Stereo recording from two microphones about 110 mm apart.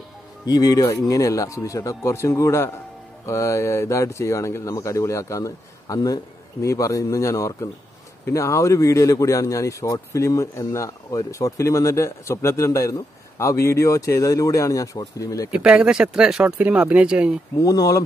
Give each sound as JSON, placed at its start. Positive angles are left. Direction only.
{"t": 0.5, "sound": "speech", "side_deg": 35}
{"t": 15.5, "sound": "speech", "side_deg": -10}
{"t": 17.6, "sound": "speech", "side_deg": 30}